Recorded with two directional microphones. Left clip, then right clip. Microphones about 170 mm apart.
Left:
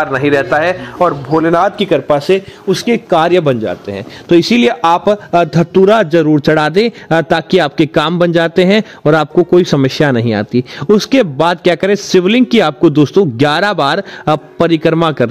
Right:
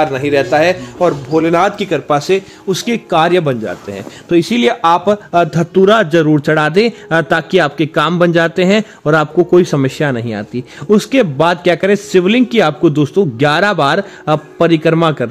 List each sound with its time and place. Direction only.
0.0 s a man's voice: 5° right (ahead or behind); by 15.2 s 35° left (ahead or behind)